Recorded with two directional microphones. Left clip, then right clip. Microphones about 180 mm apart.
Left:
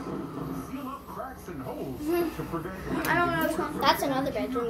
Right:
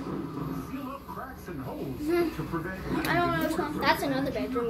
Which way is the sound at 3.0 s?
20° right (ahead or behind).